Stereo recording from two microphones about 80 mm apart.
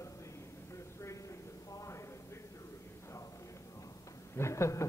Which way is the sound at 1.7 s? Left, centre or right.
Left.